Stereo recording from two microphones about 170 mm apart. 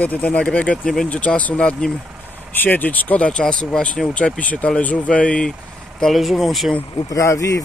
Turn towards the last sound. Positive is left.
turn(degrees=15)  # may be behind; listen again after turning